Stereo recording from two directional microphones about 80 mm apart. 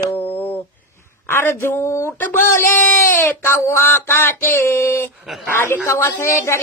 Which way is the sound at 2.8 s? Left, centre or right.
Left.